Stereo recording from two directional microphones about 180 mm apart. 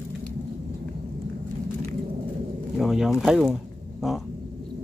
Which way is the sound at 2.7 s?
5° right (ahead or behind).